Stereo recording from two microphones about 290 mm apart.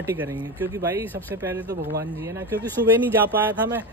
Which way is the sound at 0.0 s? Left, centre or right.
Centre.